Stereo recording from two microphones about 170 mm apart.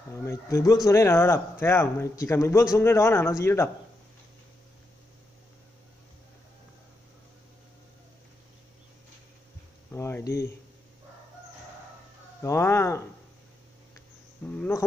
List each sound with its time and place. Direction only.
0.1 s speech: 15° left (ahead or behind)
9.8 s a sound: 15° left (ahead or behind)
12.4 s speech: 15° left (ahead or behind)
14.4 s speech: 10° left (ahead or behind)